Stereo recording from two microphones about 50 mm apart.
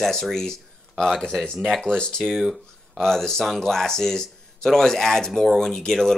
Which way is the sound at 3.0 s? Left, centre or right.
Centre.